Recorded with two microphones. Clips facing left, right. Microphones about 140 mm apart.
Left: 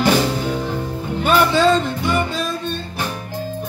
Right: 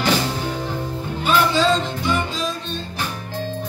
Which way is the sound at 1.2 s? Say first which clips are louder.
Left 3 dB; 55° left (ahead or behind).